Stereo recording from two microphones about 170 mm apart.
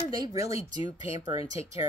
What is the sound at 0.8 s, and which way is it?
Speech, 35° left (ahead or behind).